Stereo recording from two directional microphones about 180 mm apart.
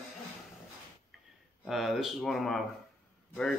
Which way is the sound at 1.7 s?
Centre (ahead or behind).